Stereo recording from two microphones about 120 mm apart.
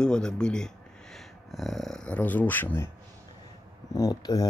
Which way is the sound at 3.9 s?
30° left (ahead or behind).